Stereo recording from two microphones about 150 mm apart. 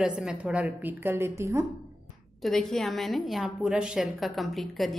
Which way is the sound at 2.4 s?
Centre (ahead or behind).